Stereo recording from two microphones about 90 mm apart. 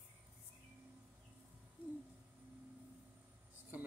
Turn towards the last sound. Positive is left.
turn(degrees=-20)  # may be behind; listen again after turning